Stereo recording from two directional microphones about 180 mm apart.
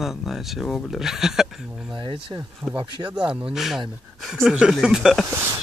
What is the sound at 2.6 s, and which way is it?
Speech, 10° right (ahead or behind).